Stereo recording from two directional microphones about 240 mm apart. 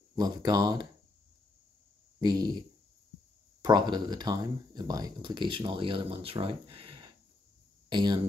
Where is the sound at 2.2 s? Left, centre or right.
Centre.